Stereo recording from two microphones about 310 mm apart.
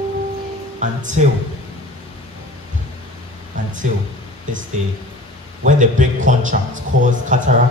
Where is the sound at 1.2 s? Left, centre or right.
Right.